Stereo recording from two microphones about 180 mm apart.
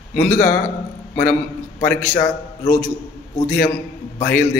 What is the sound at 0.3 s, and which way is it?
Speech, 15° left (ahead or behind).